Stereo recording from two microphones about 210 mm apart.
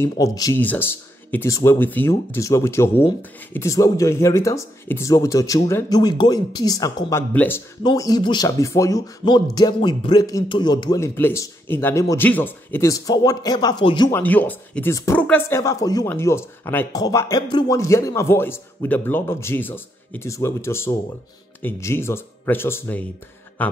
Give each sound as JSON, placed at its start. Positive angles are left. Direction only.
{"t": 0.0, "sound": "speech", "side_deg": 15}
{"t": 14.1, "sound": "speech", "side_deg": 10}
{"t": 23.6, "sound": "a sound", "side_deg": 10}